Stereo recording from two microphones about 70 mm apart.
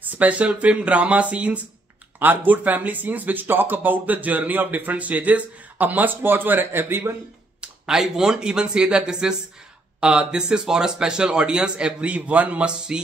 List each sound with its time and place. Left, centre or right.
0.0 s speech: right
7.6 s speech: centre